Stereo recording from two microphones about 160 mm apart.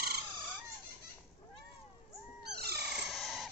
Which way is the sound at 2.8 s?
Centre (ahead or behind).